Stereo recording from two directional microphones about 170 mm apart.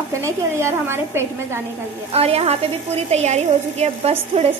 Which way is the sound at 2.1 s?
35° right (ahead or behind).